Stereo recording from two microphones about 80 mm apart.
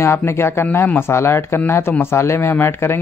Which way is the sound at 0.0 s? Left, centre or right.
Left.